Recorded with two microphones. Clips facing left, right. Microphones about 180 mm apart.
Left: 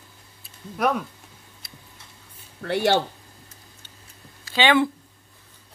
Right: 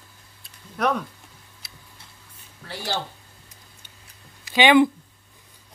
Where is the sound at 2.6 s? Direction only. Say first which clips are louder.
Left 10 dB; 65° left (ahead or behind).